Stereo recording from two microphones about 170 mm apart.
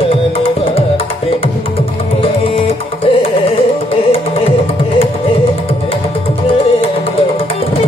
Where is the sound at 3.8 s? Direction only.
35° left (ahead or behind).